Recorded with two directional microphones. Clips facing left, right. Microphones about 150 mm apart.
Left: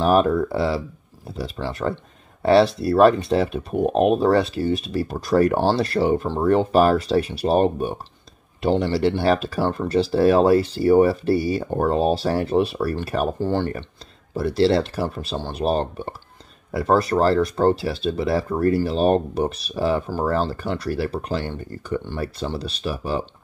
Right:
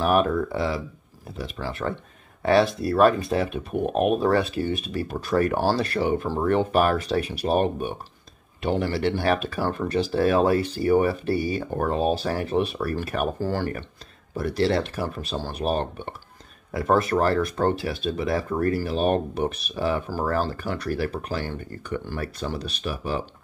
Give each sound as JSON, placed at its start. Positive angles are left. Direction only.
{"t": 0.0, "sound": "speech", "side_deg": 30}